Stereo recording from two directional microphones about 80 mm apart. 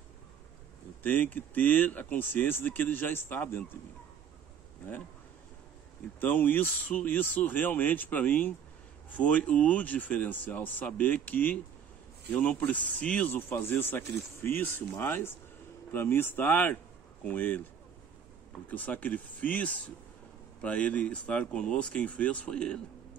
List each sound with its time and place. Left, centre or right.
1.0 s speech: left
6.2 s speech: left
13.3 s speech: left
18.7 s speech: centre